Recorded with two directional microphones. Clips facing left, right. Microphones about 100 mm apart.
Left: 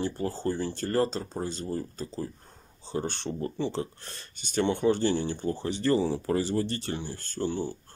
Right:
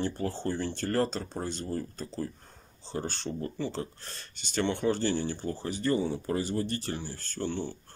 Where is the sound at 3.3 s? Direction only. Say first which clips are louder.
Left 3 dB; 20° left (ahead or behind).